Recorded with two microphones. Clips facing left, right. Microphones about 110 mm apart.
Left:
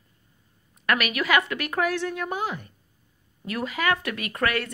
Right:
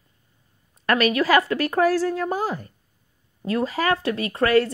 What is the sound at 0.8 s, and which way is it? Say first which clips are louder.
Speech: right 5 dB; 30° right (ahead or behind).